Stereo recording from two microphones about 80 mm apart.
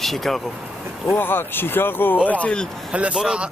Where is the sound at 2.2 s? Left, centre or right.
Centre.